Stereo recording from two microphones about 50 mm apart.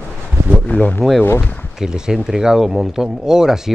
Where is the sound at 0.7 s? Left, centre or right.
Left.